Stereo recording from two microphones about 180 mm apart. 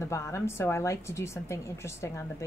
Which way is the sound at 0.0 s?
15° left (ahead or behind).